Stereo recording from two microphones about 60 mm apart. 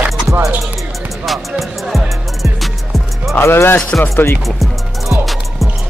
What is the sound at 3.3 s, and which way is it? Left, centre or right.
Speech, left.